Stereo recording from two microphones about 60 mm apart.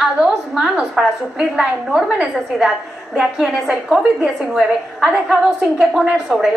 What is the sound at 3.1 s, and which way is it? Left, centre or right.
A woman's voice, centre.